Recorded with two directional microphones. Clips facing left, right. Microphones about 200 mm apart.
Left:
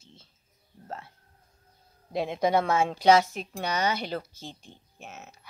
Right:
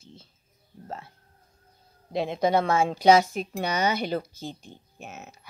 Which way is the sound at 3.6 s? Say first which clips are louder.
Right 2 dB; 20° right (ahead or behind).